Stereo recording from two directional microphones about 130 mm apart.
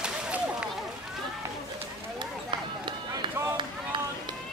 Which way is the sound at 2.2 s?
40° right (ahead or behind).